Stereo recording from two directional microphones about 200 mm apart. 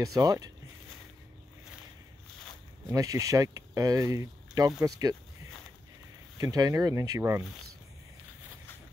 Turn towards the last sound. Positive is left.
turn(degrees=-15)  # may be behind; listen again after turning